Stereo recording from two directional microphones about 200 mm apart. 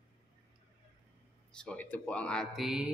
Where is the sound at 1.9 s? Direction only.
5° left (ahead or behind).